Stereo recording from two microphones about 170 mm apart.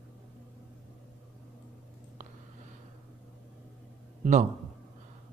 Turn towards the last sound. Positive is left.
turn(degrees=-45)  # may be behind; listen again after turning